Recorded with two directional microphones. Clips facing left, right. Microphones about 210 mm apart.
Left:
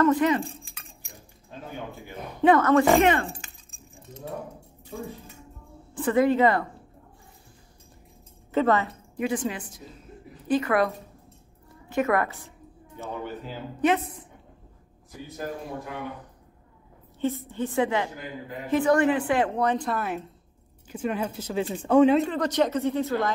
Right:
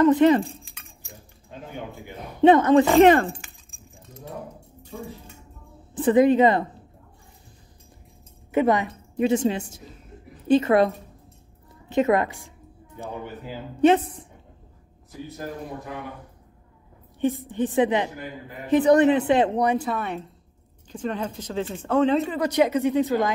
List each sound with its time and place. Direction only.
0.0 s keys jangling: 20° right (ahead or behind)
2.4 s a woman's voice: 20° right (ahead or behind)
3.0 s speech: 40° right (ahead or behind)
5.9 s a woman's voice: 20° right (ahead or behind)
8.5 s a woman's voice: 15° right (ahead or behind)
11.9 s a woman's voice: 20° right (ahead or behind)
13.7 s a woman's voice: 30° right (ahead or behind)
17.5 s a woman's voice: 15° right (ahead or behind)
19.9 s a woman's voice: centre (ahead or behind)
22.1 s speech: 5° right (ahead or behind)